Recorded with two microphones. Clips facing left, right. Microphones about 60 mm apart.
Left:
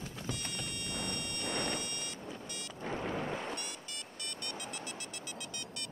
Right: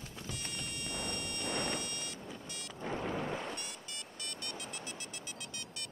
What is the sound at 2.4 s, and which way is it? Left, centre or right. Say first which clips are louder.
Music: left 1 dB; centre.